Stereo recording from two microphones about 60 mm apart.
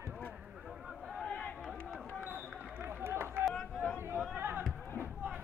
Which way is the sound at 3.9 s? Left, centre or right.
Right.